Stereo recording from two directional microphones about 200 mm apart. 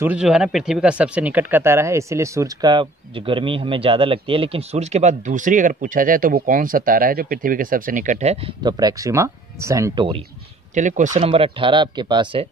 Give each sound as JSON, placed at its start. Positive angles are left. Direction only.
{"t": 0.0, "sound": "speech", "side_deg": -5}
{"t": 8.6, "sound": "speech", "side_deg": -20}
{"t": 10.7, "sound": "speech", "side_deg": -40}